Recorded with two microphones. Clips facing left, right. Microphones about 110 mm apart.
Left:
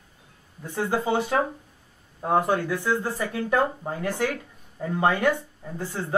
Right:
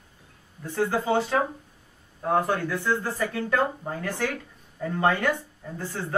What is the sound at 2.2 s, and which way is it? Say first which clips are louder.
Speech: left 2 dB; 15° left (ahead or behind).